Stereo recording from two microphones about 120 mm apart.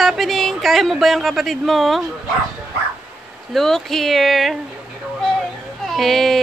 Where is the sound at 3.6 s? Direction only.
5° left (ahead or behind).